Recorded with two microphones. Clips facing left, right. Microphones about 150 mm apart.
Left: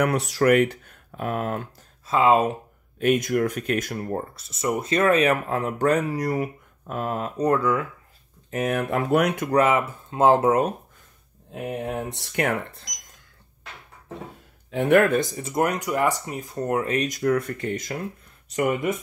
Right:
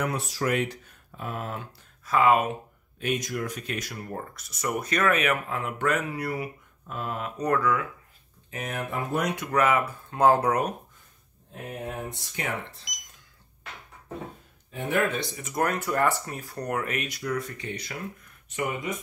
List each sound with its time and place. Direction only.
0.0 s speech: 65° left (ahead or behind)
2.0 s speech: 25° left (ahead or behind)
3.0 s speech: 55° left (ahead or behind)
4.0 s speech: 35° left (ahead or behind)
8.5 s speech: 50° left (ahead or behind)
8.9 s speech: 75° left (ahead or behind)
9.5 s speech: 30° left (ahead or behind)
11.6 s speech: 80° left; by 12.8 s 60° left (ahead or behind)
14.7 s speech: 70° left (ahead or behind); by 15.4 s 45° left (ahead or behind)
15.4 s speech: 20° left (ahead or behind)
17.1 s speech: 50° left (ahead or behind)